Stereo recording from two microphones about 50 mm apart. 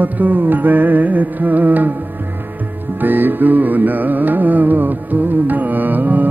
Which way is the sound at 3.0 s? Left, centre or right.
Right.